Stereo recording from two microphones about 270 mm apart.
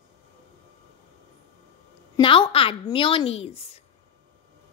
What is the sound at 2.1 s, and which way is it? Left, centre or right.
A woman's voice, centre.